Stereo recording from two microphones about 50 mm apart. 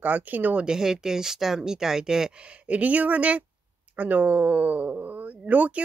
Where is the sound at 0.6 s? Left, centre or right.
Centre.